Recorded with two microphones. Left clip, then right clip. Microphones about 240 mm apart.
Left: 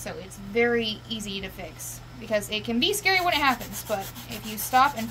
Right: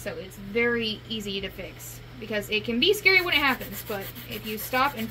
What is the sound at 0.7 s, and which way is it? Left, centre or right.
A woman's voice, left.